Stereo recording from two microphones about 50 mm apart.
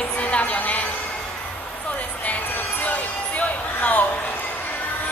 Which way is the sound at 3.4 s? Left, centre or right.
Left.